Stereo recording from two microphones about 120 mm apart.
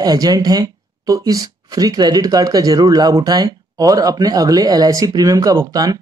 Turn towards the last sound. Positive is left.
turn(degrees=-30)  # may be behind; listen again after turning